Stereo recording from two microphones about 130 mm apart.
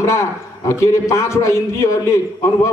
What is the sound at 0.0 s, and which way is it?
A man's voice, 20° left (ahead or behind).